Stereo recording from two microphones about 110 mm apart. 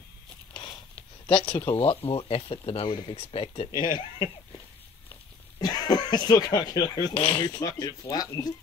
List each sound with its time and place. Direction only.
1.2 s speech: 55° left (ahead or behind)
2.9 s speech: 45° left (ahead or behind)
3.2 s speech: 60° left (ahead or behind)
3.7 s speech: 45° left (ahead or behind)
5.6 s speech: 40° left (ahead or behind)